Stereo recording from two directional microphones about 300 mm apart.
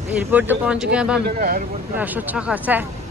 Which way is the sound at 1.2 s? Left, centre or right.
Right.